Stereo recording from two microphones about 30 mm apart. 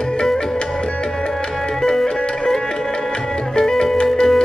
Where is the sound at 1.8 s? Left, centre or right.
Centre.